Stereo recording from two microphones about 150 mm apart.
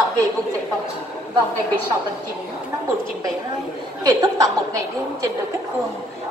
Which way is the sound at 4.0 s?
25° right (ahead or behind).